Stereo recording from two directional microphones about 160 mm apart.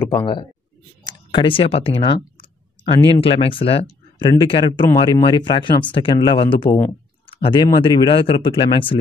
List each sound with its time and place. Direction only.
0.0 s speech: 30° left (ahead or behind)